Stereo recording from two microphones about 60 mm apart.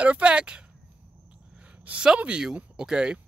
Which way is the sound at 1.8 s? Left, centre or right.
Right.